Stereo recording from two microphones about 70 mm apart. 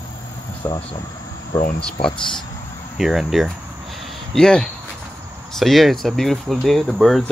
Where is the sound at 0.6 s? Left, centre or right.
Left.